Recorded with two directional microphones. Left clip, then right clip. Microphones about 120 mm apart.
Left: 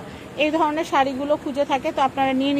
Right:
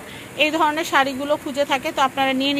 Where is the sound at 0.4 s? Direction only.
10° left (ahead or behind).